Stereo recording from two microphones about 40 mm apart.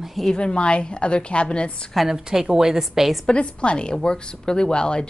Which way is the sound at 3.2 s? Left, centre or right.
Left.